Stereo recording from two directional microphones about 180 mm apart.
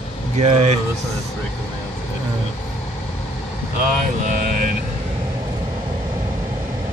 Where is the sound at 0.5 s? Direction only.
35° right (ahead or behind).